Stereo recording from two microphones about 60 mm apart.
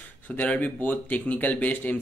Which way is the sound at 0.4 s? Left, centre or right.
Left.